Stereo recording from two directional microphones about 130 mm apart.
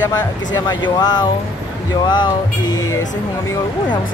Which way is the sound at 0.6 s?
35° left (ahead or behind).